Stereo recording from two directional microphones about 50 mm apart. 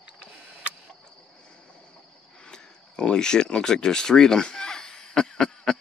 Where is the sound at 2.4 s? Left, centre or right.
Centre.